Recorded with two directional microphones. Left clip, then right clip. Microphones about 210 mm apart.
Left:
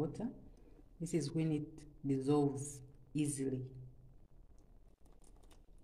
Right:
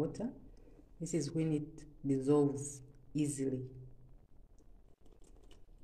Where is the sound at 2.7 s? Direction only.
15° left (ahead or behind).